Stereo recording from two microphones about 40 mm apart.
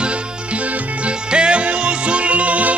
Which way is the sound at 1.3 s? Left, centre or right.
Right.